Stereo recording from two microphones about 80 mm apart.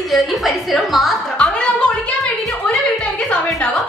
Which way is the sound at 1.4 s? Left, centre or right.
Centre.